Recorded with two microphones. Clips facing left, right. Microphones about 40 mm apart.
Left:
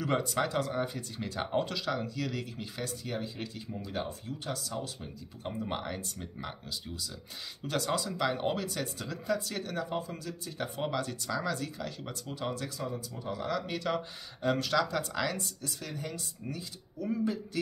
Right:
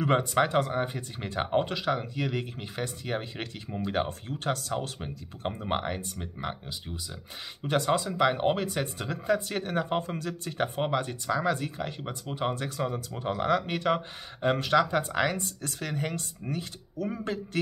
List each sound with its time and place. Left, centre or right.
0.0 s speech: right
7.6 s speech: right
9.8 s speech: right
10.8 s speech: right